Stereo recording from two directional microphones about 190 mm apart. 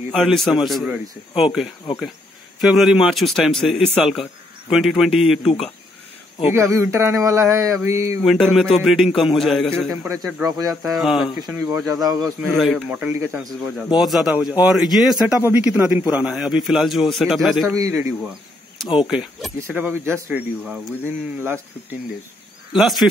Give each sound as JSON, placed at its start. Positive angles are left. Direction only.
{"t": 0.1, "sound": "a man's voice", "side_deg": 0}
{"t": 6.5, "sound": "speech", "side_deg": -15}
{"t": 8.2, "sound": "a man's voice", "side_deg": 0}
{"t": 10.4, "sound": "speech", "side_deg": -20}
{"t": 11.0, "sound": "a man's voice", "side_deg": 0}
{"t": 11.5, "sound": "speech", "side_deg": -15}
{"t": 12.4, "sound": "a man's voice", "side_deg": 0}
{"t": 17.7, "sound": "speech", "side_deg": -15}
{"t": 19.0, "sound": "speech", "side_deg": -5}
{"t": 22.7, "sound": "a man's voice", "side_deg": 0}